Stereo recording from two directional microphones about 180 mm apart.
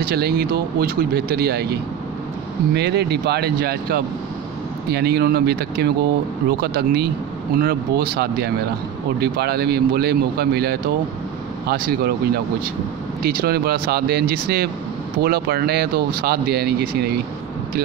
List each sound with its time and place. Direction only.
0.0 s speech: 60° right (ahead or behind)